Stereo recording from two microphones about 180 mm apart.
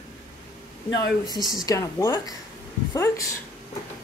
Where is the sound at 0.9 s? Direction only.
20° left (ahead or behind).